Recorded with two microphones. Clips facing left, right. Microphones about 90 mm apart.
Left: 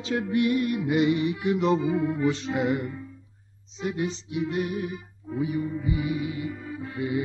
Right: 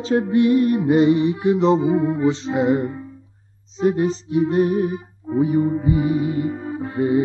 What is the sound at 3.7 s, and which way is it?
Music, 40° right (ahead or behind).